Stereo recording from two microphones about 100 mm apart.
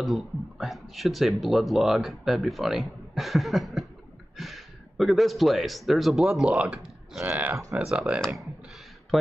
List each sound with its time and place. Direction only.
0.0 s speech: centre (ahead or behind); by 7.5 s 20° right (ahead or behind)
7.8 s speech: 5° right (ahead or behind)